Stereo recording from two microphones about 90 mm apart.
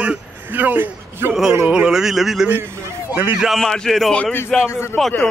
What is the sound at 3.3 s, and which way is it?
Speech, centre (ahead or behind).